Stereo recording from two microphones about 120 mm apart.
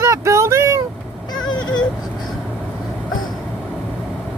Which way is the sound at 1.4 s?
35° left (ahead or behind).